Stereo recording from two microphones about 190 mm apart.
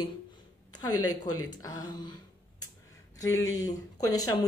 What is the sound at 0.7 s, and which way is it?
Speech, 20° left (ahead or behind).